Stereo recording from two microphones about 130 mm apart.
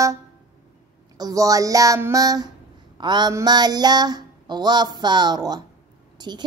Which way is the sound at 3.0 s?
35° right (ahead or behind).